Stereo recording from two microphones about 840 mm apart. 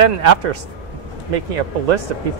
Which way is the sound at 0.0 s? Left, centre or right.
Right.